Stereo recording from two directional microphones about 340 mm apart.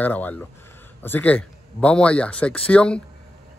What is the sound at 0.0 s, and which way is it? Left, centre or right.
Speech, centre.